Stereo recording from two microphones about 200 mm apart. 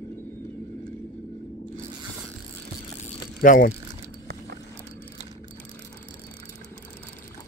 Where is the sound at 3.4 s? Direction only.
45° left (ahead or behind).